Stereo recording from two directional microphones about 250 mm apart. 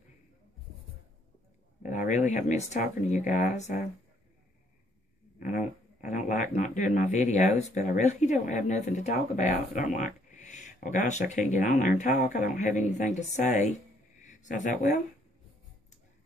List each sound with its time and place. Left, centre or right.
1.8 s speech: left
5.4 s speech: left